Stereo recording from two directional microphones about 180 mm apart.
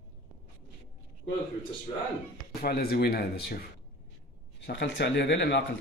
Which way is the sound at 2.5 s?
60° left (ahead or behind).